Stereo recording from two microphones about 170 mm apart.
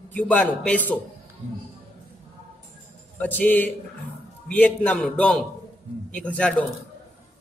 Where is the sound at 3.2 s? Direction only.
10° left (ahead or behind).